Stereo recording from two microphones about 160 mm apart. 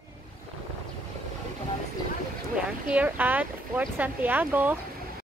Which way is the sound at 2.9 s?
10° right (ahead or behind).